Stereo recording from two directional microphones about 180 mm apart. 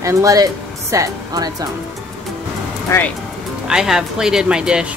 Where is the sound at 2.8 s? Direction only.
10° left (ahead or behind).